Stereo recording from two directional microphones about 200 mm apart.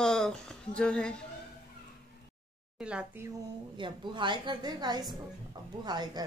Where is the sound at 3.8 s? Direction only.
25° right (ahead or behind).